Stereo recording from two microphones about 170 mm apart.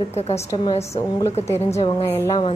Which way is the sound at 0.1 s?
40° left (ahead or behind).